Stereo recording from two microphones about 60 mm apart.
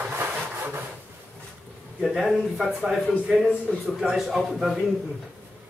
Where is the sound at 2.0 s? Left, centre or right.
Centre.